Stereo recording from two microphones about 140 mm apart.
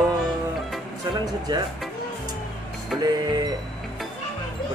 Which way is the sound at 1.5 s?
30° right (ahead or behind).